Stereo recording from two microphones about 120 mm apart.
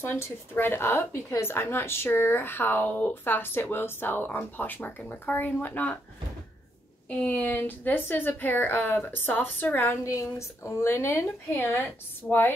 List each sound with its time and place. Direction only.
0.0 s a woman's voice: 20° left (ahead or behind)
7.2 s a woman's voice: 15° left (ahead or behind)